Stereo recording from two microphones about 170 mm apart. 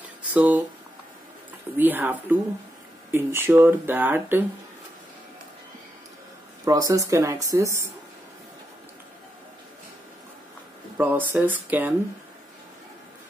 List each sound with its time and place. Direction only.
0.3 s speech: 10° right (ahead or behind)
1.8 s speech: 10° right (ahead or behind)
6.6 s speech: 20° right (ahead or behind)
11.0 s speech: 10° right (ahead or behind)